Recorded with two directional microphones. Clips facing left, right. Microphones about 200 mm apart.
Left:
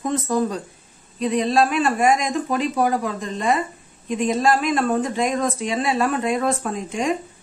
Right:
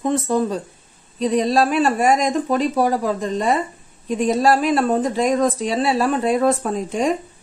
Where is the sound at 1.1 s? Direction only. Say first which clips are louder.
Right 2 dB; 35° right (ahead or behind).